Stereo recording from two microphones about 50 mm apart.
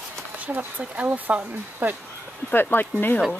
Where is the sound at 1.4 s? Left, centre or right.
Right.